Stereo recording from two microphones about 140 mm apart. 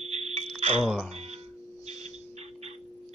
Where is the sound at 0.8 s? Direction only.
5° right (ahead or behind).